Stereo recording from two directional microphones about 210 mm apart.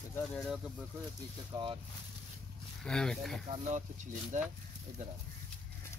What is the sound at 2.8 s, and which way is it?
Speech, 5° left (ahead or behind).